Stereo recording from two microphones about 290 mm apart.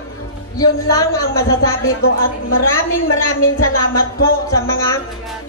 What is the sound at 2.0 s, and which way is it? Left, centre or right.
A woman's voice, left.